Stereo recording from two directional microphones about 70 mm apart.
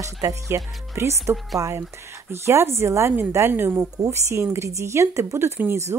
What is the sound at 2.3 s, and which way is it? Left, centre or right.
Speech, right.